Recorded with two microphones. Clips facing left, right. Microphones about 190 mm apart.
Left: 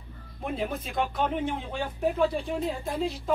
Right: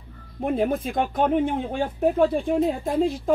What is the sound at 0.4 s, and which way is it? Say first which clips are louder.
A woman's voice: right 8 dB; 50° right (ahead or behind).